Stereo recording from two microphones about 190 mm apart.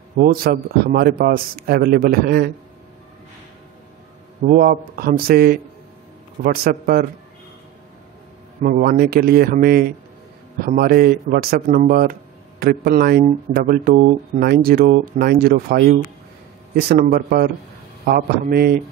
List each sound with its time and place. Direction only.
0.2 s speech: 50° right (ahead or behind)
4.4 s speech: 45° right (ahead or behind)
8.6 s speech: 50° right (ahead or behind)
17.0 s speech: 50° right (ahead or behind)